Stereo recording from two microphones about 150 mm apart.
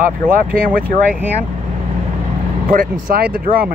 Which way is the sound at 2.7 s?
80° right.